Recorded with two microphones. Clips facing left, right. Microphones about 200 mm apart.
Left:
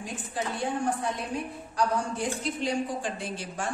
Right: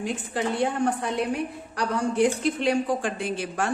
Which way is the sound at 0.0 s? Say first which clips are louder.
Right 6 dB; 70° right (ahead or behind).